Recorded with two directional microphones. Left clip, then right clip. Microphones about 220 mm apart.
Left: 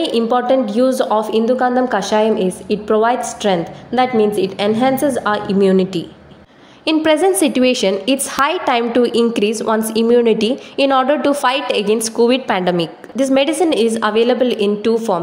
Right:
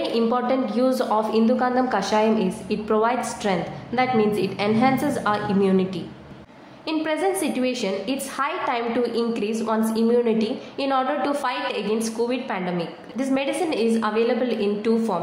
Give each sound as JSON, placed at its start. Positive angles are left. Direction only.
{"t": 0.0, "sound": "a woman's voice", "side_deg": 30}